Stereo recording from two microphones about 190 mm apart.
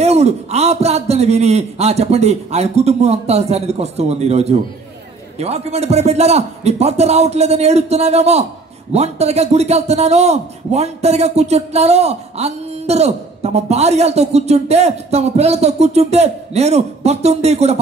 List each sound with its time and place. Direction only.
0.0 s a man's voice: 35° right (ahead or behind)